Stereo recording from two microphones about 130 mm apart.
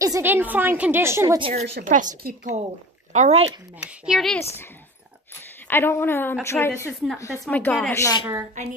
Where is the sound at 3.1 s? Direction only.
60° right (ahead or behind).